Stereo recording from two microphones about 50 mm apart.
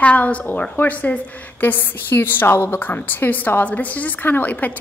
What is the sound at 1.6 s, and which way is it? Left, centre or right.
A woman's voice, left.